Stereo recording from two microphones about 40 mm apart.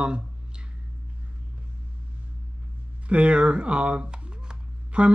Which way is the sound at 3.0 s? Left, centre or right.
Right.